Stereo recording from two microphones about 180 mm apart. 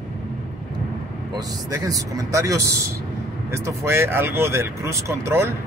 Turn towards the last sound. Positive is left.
turn(degrees=-15)  # may be behind; listen again after turning